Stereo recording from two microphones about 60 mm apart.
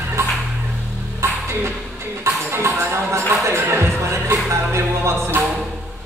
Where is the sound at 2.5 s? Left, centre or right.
Right.